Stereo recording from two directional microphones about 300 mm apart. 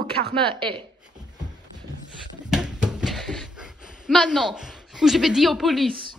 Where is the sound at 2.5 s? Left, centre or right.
Centre.